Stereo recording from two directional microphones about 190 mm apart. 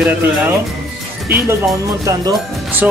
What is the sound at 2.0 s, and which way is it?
Speech, 20° right (ahead or behind).